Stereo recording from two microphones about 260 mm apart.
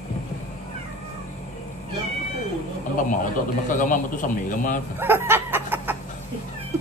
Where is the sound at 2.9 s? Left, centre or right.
Left.